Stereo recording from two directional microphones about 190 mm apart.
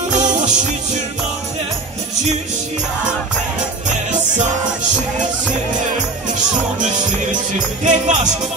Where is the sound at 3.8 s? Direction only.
40° right (ahead or behind).